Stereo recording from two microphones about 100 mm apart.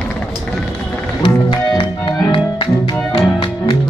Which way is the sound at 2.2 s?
50° left (ahead or behind).